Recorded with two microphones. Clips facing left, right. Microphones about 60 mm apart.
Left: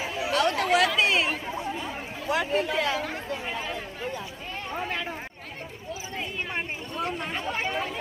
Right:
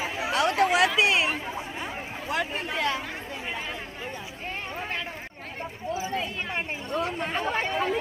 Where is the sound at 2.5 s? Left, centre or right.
Centre.